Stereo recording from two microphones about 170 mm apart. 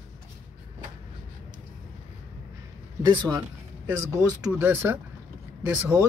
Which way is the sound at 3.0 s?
25° right (ahead or behind).